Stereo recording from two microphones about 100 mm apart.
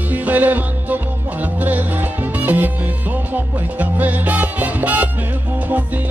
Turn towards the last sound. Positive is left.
turn(degrees=-15)  # may be behind; listen again after turning